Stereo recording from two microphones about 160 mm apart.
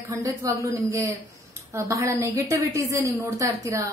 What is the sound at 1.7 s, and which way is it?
A woman's voice, 20° right (ahead or behind).